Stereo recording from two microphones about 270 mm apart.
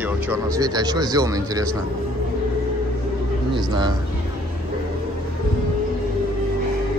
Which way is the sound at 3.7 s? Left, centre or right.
Centre.